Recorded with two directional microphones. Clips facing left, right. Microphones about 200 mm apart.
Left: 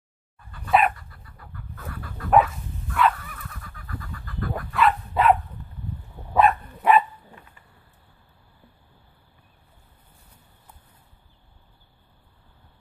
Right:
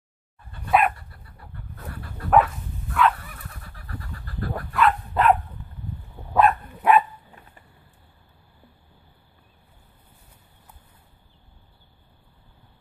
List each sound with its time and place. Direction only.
0.7 s dog: centre (ahead or behind)
1.1 s chicken: 30° right (ahead or behind)
2.3 s dog: centre (ahead or behind)
3.2 s fowl: 30° right (ahead or behind)
4.7 s dog: centre (ahead or behind)